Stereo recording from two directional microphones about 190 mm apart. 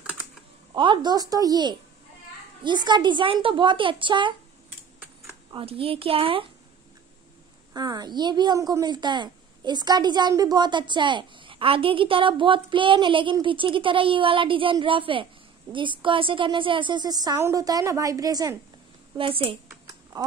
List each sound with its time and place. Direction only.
0.7 s a woman's voice: 25° right (ahead or behind)
7.7 s a woman's voice: 20° right (ahead or behind)
19.9 s typing: 15° right (ahead or behind)